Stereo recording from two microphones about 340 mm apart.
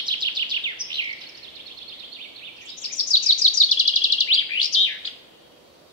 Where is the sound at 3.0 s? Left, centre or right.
Left.